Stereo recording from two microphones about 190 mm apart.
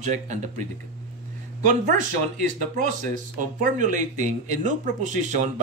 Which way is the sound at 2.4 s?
40° right (ahead or behind).